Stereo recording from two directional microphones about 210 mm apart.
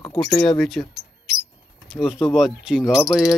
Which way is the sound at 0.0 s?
25° left (ahead or behind).